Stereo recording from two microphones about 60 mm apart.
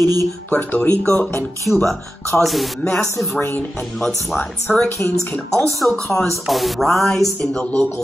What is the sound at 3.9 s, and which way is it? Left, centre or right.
Speech, centre.